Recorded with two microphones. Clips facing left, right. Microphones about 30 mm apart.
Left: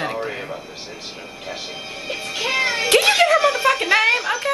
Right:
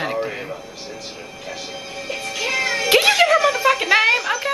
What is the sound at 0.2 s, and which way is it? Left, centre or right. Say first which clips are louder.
Music: right 1 dB; centre.